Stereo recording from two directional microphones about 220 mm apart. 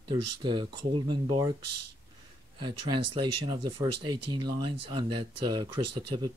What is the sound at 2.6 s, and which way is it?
Speech, 20° right (ahead or behind).